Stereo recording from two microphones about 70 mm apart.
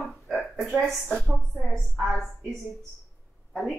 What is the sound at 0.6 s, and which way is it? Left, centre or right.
Speech, centre.